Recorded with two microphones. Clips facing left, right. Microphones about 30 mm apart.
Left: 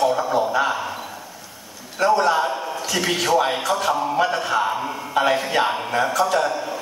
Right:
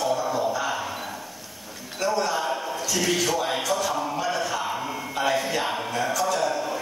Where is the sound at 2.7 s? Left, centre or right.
Left.